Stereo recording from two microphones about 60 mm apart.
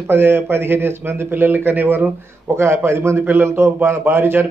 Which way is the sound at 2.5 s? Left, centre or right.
Right.